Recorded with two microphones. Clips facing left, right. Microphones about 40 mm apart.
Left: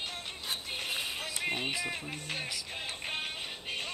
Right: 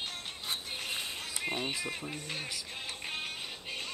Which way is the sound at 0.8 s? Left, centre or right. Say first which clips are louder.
Left 4 dB; centre.